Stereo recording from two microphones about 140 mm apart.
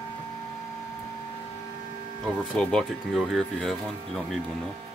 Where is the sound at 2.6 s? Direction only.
5° left (ahead or behind).